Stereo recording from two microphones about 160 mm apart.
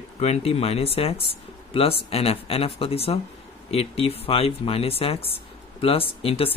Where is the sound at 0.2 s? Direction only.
40° left (ahead or behind).